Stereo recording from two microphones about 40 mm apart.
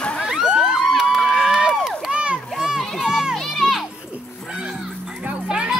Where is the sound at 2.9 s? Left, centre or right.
Centre.